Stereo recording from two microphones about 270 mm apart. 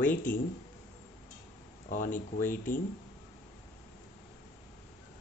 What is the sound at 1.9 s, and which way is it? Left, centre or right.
Speech, left.